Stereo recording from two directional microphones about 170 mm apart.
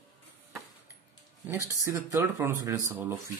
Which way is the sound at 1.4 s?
15° right (ahead or behind).